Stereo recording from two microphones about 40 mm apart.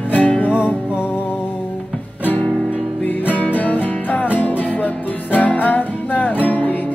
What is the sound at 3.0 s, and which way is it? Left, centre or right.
Music, left.